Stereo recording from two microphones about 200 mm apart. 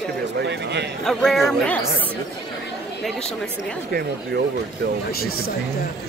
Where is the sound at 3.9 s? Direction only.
50° right (ahead or behind).